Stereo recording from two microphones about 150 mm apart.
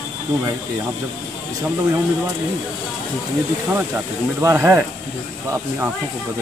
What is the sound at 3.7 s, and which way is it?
Speech, 15° right (ahead or behind).